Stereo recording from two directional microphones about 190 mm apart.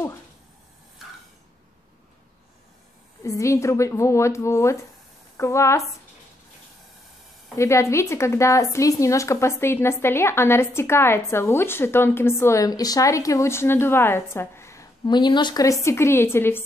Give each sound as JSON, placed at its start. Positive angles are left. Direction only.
{"t": 3.3, "sound": "a woman's voice", "side_deg": 15}
{"t": 7.5, "sound": "a woman's voice", "side_deg": 15}